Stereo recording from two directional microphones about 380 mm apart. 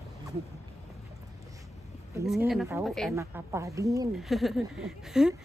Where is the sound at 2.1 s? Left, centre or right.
Centre.